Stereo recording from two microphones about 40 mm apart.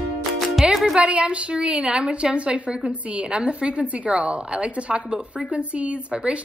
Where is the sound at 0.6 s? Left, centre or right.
Centre.